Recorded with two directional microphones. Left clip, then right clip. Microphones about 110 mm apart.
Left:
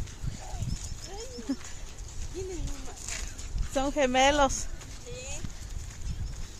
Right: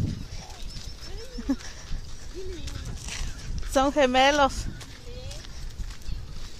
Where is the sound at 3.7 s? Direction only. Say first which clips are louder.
Right 7 dB; 90° right.